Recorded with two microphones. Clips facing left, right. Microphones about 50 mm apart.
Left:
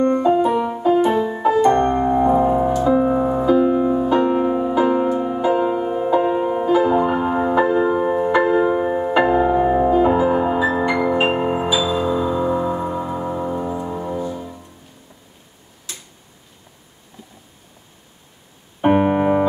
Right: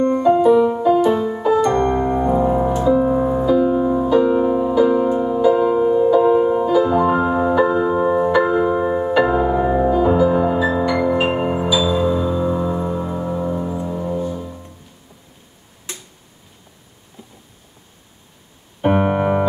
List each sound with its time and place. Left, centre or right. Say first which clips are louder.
0.1 s music: right 3 dB; centre
0.8 s music: right 1 dB; left
2.2 s music: left 1 dB; centre
3.2 s music: right 1 dB; centre
3.4 s music: left 1 dB; left
4.1 s music: right 2 dB; left
7.6 s music: right 1 dB; left
11.3 s music: right 1 dB; centre
15.9 s tick-tock: right 3 dB; right
18.8 s keyboard: left 1 dB; centre